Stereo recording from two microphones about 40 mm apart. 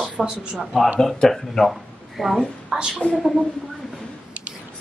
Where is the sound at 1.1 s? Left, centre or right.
Centre.